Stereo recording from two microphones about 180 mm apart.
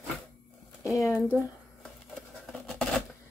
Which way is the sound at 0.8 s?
15° left (ahead or behind).